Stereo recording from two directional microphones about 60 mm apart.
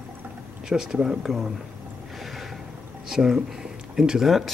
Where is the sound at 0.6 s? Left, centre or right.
Centre.